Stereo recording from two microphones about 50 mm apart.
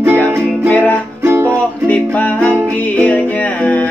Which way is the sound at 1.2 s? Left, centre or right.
Right.